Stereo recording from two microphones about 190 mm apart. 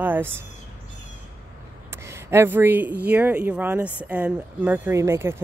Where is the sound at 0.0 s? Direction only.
10° right (ahead or behind).